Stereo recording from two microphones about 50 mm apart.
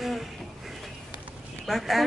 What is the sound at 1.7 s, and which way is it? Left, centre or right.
Speech, centre.